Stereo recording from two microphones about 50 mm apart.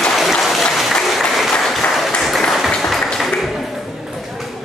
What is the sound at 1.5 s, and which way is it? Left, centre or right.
Applause, centre.